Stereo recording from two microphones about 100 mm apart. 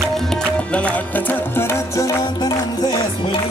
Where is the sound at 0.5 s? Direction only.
10° left (ahead or behind); by 3.0 s 40° left (ahead or behind).